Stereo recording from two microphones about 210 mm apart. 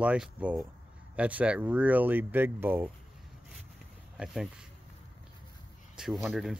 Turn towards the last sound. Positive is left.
turn(degrees=0)  # may be behind; listen again after turning